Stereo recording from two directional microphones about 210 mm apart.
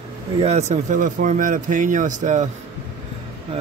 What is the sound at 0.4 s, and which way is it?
Speech, 30° right (ahead or behind).